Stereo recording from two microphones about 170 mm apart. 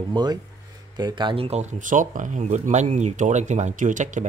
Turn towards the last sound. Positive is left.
turn(degrees=-50)  # may be behind; listen again after turning